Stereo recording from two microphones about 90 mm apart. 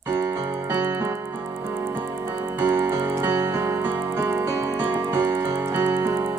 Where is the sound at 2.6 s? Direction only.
30° right (ahead or behind).